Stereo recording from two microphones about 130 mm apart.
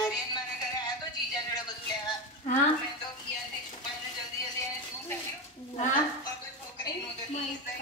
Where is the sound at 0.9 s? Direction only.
30° left (ahead or behind).